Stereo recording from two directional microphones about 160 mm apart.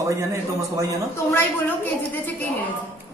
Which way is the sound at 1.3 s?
10° left (ahead or behind).